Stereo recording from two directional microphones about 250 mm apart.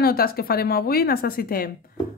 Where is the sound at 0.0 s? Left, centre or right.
Left.